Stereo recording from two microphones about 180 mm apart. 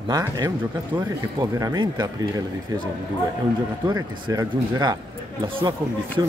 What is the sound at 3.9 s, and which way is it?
Speech, 20° right (ahead or behind).